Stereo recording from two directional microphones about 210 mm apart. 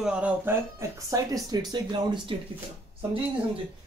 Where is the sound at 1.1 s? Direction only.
20° right (ahead or behind).